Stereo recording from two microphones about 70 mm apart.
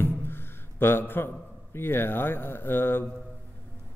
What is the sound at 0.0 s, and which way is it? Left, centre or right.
Music, left.